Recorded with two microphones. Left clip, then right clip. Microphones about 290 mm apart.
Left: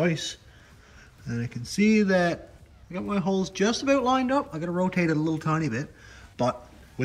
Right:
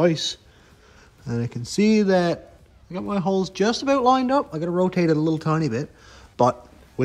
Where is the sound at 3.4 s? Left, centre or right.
Right.